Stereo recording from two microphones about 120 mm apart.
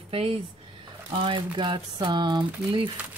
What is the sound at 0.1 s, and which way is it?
Speech, 55° right (ahead or behind).